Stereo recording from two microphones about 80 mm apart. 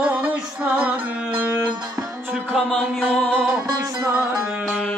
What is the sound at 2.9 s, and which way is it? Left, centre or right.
Music, centre.